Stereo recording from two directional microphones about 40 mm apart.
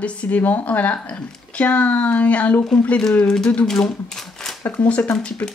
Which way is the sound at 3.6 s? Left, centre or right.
Centre.